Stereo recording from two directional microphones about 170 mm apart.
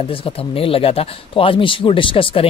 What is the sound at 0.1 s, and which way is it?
Speech, 35° left (ahead or behind).